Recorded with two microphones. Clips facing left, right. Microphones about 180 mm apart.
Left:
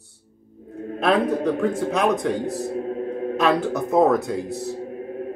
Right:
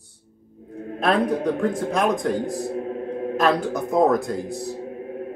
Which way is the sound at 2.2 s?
Centre (ahead or behind).